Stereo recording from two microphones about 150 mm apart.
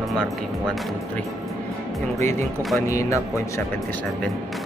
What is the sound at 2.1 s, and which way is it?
Speech, 15° left (ahead or behind).